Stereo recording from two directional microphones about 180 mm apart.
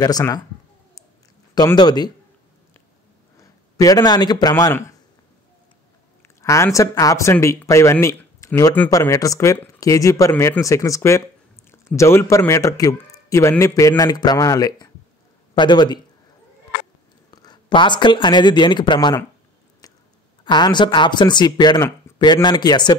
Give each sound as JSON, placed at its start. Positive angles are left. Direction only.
{"t": 0.0, "sound": "speech", "side_deg": 20}
{"t": 1.5, "sound": "speech", "side_deg": 20}
{"t": 3.3, "sound": "a man's voice", "side_deg": 20}
{"t": 6.2, "sound": "speech", "side_deg": 15}
{"t": 17.3, "sound": "speech", "side_deg": 20}
{"t": 19.8, "sound": "a sound", "side_deg": 20}
{"t": 20.4, "sound": "speech", "side_deg": 25}